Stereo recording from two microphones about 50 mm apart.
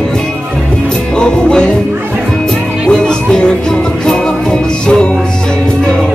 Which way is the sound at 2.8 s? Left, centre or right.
Centre.